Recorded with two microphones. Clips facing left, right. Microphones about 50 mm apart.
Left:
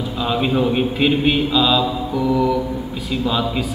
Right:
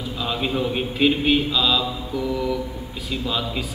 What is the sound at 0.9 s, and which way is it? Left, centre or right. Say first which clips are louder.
Speech: right 2 dB; centre.